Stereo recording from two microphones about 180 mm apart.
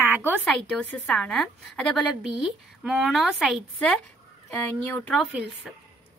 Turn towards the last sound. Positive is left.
turn(degrees=-5)  # may be behind; listen again after turning